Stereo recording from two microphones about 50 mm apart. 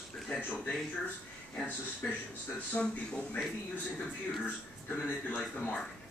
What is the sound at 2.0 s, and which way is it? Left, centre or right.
Speech, left.